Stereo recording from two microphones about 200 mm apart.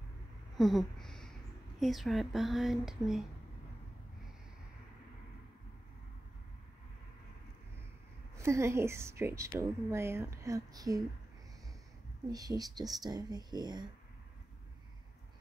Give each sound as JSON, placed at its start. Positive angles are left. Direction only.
{"t": 0.6, "sound": "a sound", "side_deg": 0}
{"t": 1.8, "sound": "speech", "side_deg": 0}
{"t": 8.4, "sound": "speech", "side_deg": -15}
{"t": 12.3, "sound": "speech", "side_deg": -20}